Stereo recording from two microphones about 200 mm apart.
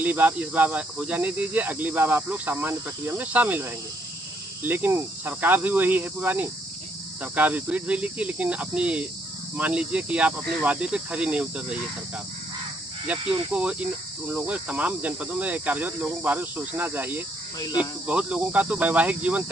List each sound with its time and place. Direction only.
0.0 s speech: 10° right (ahead or behind)
10.6 s cricket: 5° right (ahead or behind)
13.0 s speech: 5° right (ahead or behind)
17.6 s speech: 20° left (ahead or behind)
18.0 s speech: 5° right (ahead or behind)